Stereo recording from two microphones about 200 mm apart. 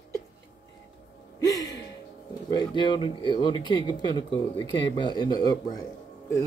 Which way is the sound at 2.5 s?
20° left (ahead or behind).